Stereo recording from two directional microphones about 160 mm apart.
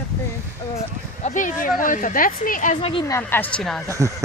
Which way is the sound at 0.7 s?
50° left (ahead or behind).